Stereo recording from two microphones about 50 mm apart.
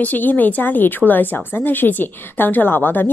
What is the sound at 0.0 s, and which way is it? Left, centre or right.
A woman's voice, left.